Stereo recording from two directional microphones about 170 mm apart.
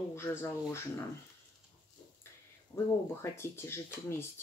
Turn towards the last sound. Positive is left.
turn(degrees=15)  # may be behind; listen again after turning